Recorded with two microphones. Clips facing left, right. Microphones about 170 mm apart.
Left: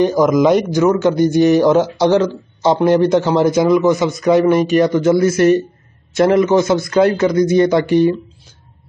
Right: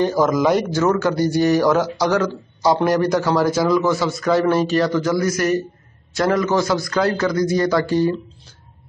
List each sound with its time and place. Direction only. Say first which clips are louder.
0.0 s speech: left 5 dB; 15° left (ahead or behind)